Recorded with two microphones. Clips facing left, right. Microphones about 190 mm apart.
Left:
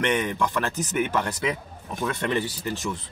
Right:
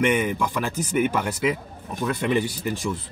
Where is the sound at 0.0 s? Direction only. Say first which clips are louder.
Right 3 dB; 10° right (ahead or behind).